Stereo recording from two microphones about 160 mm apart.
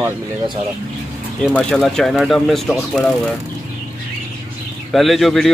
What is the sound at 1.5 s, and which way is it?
A man's voice, 5° left (ahead or behind).